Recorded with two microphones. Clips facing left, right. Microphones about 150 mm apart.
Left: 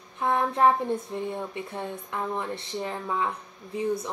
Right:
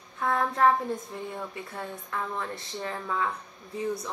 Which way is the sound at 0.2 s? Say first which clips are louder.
Left 2 dB; 20° left (ahead or behind).